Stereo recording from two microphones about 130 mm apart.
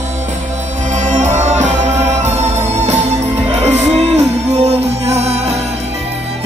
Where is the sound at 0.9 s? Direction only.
70° right (ahead or behind).